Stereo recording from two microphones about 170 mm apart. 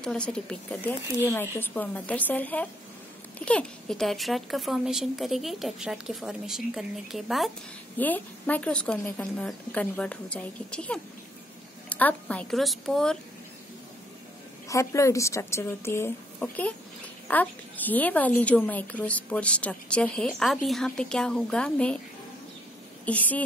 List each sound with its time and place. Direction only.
0.0 s a woman's voice: 5° left (ahead or behind)
8.0 s a woman's voice: 10° left (ahead or behind)
14.7 s a woman's voice: 20° left (ahead or behind)
23.0 s a woman's voice: 10° left (ahead or behind)